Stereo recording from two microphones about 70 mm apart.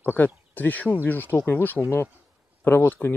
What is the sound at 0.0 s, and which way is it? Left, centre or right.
Speech, left.